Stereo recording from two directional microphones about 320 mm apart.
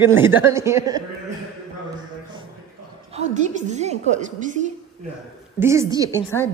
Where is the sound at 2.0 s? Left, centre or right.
Centre.